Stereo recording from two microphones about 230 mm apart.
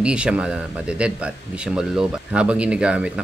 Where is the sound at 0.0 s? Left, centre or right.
Centre.